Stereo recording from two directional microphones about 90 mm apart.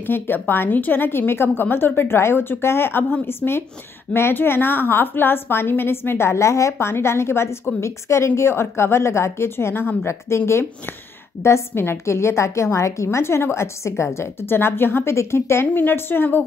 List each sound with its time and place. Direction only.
0.0 s a woman's voice: 25° left (ahead or behind)